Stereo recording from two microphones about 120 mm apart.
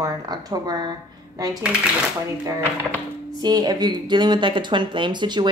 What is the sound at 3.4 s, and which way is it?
Speech, 35° right (ahead or behind).